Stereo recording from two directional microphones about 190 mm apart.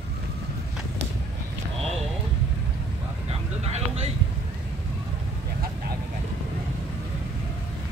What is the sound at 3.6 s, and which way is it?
Vehicle, 35° right (ahead or behind).